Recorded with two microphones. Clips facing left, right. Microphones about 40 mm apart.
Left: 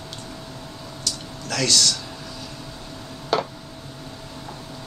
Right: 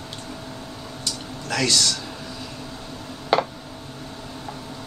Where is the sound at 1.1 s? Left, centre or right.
Centre.